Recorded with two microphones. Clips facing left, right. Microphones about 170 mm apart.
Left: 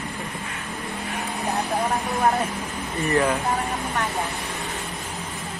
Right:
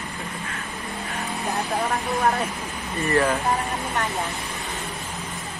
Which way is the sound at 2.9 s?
15° left (ahead or behind).